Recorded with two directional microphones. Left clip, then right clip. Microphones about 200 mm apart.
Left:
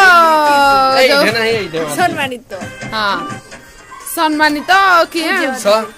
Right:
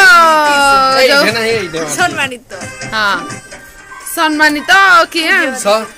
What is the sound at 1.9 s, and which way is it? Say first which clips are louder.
Speech: right 1 dB; 25° left (ahead or behind).